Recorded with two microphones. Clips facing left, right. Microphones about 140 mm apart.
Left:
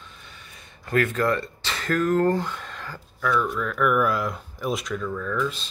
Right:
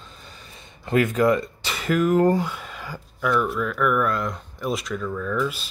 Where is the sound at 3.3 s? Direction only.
5° right (ahead or behind).